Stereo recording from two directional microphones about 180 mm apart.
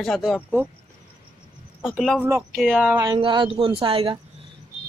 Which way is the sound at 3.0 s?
25° right (ahead or behind).